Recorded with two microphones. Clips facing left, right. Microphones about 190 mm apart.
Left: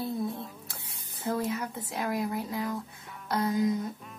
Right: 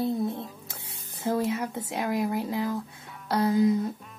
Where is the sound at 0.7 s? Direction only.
25° right (ahead or behind).